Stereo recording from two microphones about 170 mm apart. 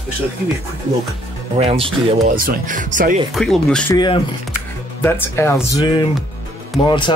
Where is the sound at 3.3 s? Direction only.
Centre (ahead or behind).